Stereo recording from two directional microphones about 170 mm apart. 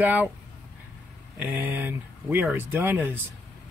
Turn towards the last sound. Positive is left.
turn(degrees=-15)  # may be behind; listen again after turning